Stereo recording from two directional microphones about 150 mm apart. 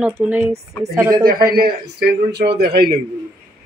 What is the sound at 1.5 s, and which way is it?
Speech, 90° right.